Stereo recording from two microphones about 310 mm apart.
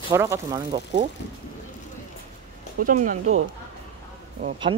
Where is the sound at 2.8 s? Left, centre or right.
Right.